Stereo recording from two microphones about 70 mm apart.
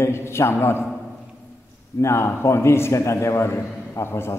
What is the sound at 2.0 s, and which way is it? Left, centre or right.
A man's voice, left.